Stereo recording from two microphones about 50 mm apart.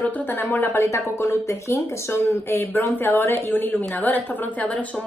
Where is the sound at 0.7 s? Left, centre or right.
Left.